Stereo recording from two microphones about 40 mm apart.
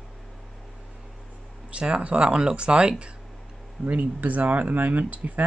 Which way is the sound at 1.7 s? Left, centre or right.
Right.